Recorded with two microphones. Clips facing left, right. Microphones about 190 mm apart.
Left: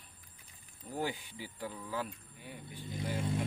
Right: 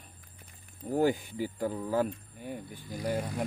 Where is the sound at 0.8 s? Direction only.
45° right (ahead or behind).